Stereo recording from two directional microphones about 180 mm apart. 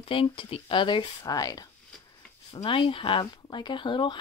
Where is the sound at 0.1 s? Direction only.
30° left (ahead or behind).